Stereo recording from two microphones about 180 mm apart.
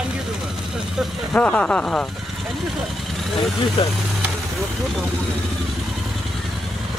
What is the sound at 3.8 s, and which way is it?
Speech, 30° left (ahead or behind).